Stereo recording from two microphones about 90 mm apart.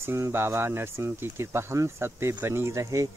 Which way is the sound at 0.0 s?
30° right (ahead or behind).